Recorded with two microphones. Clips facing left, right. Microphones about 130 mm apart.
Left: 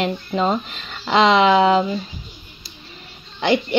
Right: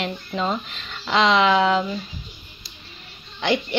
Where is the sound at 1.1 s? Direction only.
5° left (ahead or behind).